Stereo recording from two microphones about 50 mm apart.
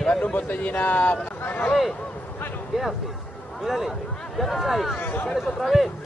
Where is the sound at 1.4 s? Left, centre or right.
Left.